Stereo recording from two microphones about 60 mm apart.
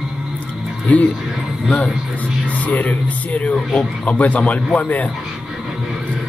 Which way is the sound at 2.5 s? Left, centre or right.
Left.